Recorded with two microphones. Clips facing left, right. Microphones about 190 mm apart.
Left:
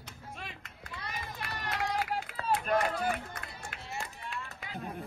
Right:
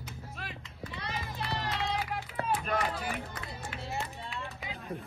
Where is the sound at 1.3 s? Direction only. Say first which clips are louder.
Right 5 dB; 30° right (ahead or behind).